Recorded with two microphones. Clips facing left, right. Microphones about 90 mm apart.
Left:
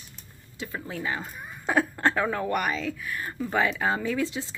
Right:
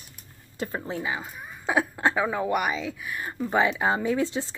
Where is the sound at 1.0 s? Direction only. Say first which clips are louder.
Even; 10° right (ahead or behind).